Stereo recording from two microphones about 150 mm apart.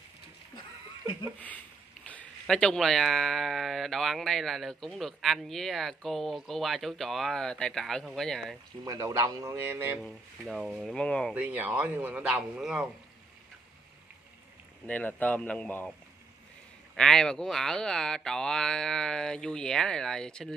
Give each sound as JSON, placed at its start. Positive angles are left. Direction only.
{"t": 2.0, "sound": "speech", "side_deg": 5}
{"t": 8.8, "sound": "a man's voice", "side_deg": -25}
{"t": 10.0, "sound": "speech", "side_deg": 0}
{"t": 11.3, "sound": "a man's voice", "side_deg": -10}
{"t": 14.9, "sound": "speech", "side_deg": 10}
{"t": 16.9, "sound": "speech", "side_deg": 5}